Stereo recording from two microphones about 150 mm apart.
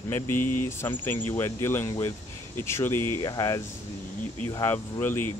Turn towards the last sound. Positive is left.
turn(degrees=15)  # may be behind; listen again after turning